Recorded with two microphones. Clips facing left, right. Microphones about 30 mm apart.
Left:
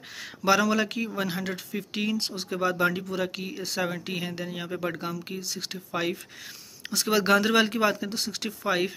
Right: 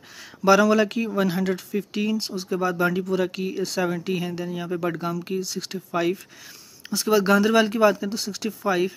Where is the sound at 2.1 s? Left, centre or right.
Left.